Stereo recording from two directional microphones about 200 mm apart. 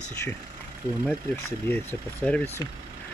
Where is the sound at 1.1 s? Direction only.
10° left (ahead or behind).